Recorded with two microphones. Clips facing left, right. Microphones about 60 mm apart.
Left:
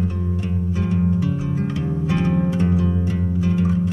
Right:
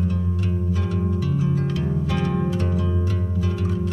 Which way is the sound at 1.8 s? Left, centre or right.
Left.